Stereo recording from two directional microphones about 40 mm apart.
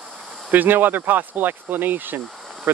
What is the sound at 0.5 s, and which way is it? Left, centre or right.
Speech, right.